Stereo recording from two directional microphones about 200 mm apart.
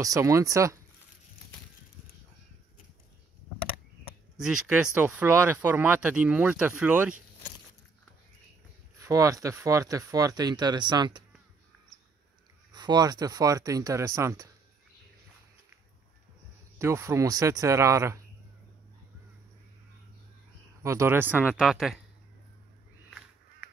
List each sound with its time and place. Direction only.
0.0 s speech: 15° right (ahead or behind)
4.4 s speech: 5° right (ahead or behind)
9.0 s speech: 15° right (ahead or behind)
12.7 s speech: 20° right (ahead or behind)
16.7 s speech: 15° right (ahead or behind)
20.8 s speech: 15° right (ahead or behind)